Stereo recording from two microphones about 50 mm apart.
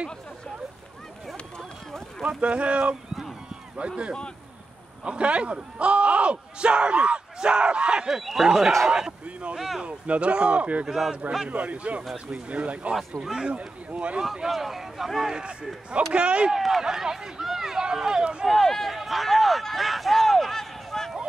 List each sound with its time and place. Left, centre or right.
2.2 s speech: right
5.0 s speech: right
9.8 s speech: right
10.9 s speech: centre
11.4 s speech: right
13.2 s speech: centre
13.6 s speech: right
14.5 s speech: centre
16.1 s speech: right
16.5 s speech: centre
18.4 s a sound: centre